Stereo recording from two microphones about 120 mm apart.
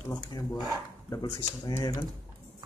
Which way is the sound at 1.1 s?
30° left (ahead or behind).